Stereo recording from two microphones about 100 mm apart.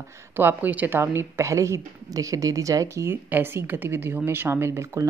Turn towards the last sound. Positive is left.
turn(degrees=-30)  # may be behind; listen again after turning